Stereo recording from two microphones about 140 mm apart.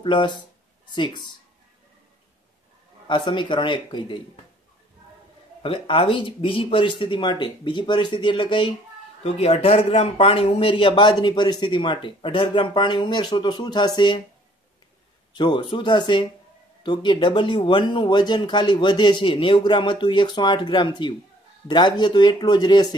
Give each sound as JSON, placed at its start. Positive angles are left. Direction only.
{"t": 0.0, "sound": "speech", "side_deg": 35}
{"t": 3.1, "sound": "speech", "side_deg": 35}
{"t": 5.6, "sound": "speech", "side_deg": 40}
{"t": 15.3, "sound": "speech", "side_deg": 30}